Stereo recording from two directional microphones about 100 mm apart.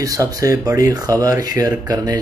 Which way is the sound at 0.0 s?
35° right (ahead or behind).